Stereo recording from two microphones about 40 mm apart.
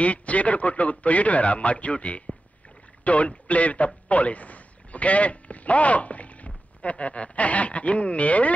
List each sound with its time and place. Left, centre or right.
0.0 s a man's voice: left